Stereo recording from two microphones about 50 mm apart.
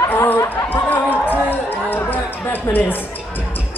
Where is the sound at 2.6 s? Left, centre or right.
Left.